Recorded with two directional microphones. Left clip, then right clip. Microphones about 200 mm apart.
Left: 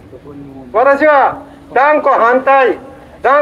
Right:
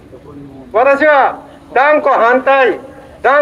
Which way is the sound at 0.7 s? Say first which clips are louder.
Even; 20° right (ahead or behind).